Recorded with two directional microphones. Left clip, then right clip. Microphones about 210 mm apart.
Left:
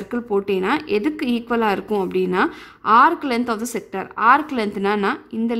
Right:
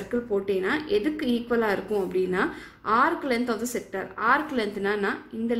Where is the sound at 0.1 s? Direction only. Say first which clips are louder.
Left 5 dB; 45° left (ahead or behind).